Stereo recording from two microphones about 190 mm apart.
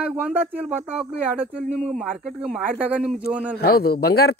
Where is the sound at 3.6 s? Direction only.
55° left (ahead or behind).